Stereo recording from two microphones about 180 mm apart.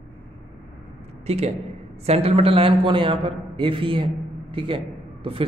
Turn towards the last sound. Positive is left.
turn(degrees=-30)  # may be behind; listen again after turning